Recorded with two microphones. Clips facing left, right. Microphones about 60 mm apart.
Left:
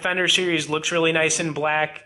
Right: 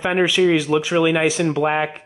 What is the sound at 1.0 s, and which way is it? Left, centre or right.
Speech, centre.